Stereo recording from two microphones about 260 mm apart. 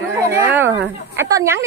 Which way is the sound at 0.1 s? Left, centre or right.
Centre.